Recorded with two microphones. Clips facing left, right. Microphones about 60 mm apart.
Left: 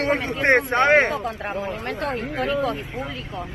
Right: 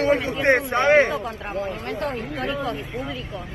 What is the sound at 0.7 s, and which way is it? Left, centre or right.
A man's voice, left.